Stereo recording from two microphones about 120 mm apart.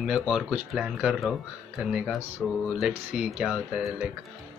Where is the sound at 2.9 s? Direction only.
10° right (ahead or behind).